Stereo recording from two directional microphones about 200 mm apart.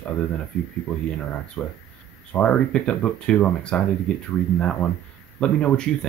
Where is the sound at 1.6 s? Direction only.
5° left (ahead or behind).